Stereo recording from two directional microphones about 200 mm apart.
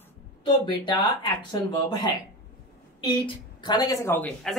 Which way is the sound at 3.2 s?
20° left (ahead or behind).